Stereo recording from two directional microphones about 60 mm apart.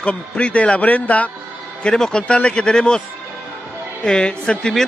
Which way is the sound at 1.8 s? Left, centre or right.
Centre.